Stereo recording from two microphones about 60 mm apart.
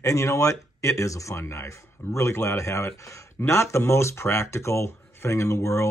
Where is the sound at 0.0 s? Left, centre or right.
Left.